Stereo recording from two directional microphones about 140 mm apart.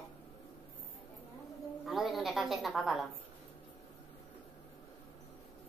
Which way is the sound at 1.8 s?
Centre (ahead or behind).